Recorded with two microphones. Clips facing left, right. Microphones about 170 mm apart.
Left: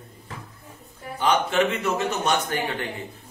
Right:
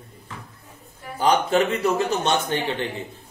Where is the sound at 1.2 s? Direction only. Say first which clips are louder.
Right 2 dB; 35° right (ahead or behind).